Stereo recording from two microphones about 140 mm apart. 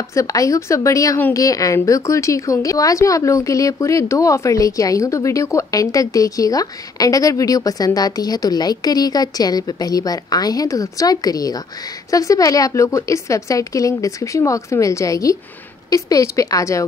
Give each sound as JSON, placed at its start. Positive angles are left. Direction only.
{"t": 0.1, "sound": "a woman's voice", "side_deg": 25}